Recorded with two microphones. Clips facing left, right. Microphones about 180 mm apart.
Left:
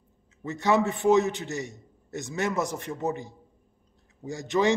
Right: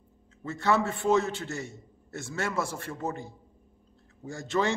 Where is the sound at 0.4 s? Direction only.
15° left (ahead or behind).